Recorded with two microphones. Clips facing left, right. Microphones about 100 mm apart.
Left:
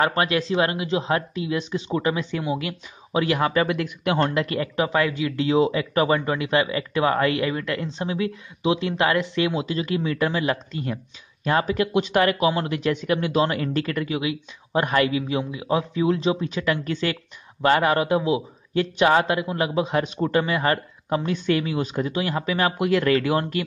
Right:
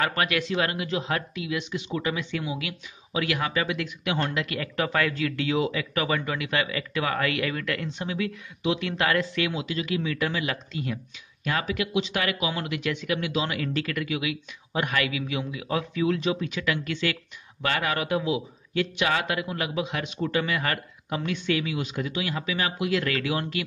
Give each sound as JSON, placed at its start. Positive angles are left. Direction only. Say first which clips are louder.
{"t": 0.0, "sound": "speech", "louder": "left 4 dB", "side_deg": 30}
{"t": 4.6, "sound": "speech", "louder": "left 3 dB", "side_deg": 20}